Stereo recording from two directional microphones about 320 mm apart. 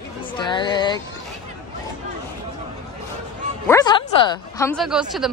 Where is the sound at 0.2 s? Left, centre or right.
Centre.